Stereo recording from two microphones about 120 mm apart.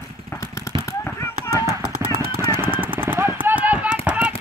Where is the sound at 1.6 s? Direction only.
25° right (ahead or behind).